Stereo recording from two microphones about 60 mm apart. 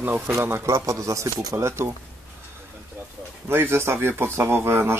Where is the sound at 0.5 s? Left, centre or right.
Right.